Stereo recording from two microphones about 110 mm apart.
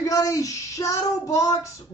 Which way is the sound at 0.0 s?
30° left (ahead or behind).